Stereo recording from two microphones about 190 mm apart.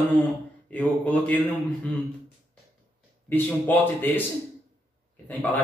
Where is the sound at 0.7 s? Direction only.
10° left (ahead or behind).